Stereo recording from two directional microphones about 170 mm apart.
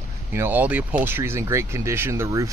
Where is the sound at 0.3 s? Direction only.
10° right (ahead or behind).